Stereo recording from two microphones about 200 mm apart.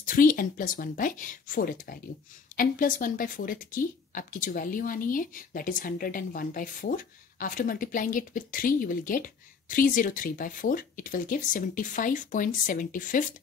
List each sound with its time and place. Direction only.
0.0 s speech: 45° left (ahead or behind)